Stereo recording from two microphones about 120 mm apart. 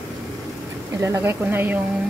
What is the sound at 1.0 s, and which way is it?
Speech, 20° right (ahead or behind).